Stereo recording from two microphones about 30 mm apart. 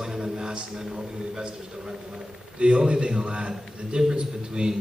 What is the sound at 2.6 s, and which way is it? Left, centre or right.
A man's voice, right.